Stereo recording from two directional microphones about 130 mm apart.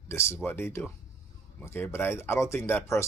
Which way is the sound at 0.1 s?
20° left (ahead or behind).